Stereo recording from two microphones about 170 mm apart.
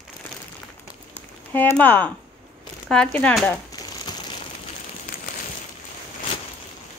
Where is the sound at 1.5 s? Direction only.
10° left (ahead or behind).